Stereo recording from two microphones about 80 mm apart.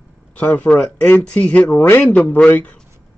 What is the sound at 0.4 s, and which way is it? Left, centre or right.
Speech, centre.